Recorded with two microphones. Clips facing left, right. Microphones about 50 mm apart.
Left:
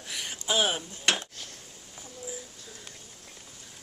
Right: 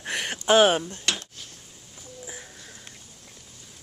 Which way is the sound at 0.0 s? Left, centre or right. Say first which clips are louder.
Right 8 dB; right.